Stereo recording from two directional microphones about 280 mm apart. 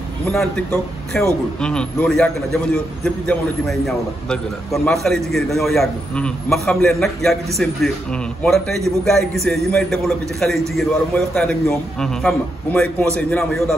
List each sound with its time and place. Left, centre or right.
0.3 s a man's voice: centre